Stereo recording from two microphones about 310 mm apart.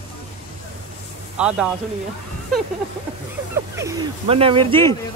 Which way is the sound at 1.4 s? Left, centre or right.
Centre.